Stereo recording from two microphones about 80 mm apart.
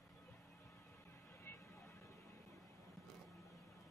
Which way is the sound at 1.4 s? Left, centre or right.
Left.